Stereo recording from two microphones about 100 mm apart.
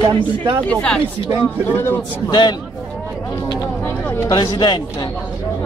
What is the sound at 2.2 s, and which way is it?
Speech, 40° left (ahead or behind).